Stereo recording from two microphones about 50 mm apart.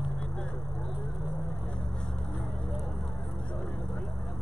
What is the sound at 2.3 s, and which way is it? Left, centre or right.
Vehicle, left.